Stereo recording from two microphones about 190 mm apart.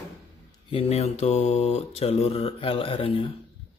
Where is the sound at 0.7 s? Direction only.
30° left (ahead or behind).